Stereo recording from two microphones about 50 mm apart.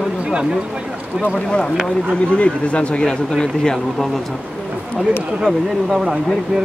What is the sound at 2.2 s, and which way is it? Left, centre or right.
A man's voice, left.